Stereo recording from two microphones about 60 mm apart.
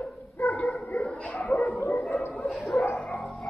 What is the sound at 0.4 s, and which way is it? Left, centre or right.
Dog, left.